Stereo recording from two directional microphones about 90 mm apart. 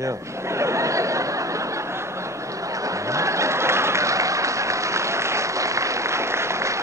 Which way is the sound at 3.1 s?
35° right (ahead or behind).